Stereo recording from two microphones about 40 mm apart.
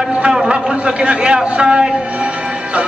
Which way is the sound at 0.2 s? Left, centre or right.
Right.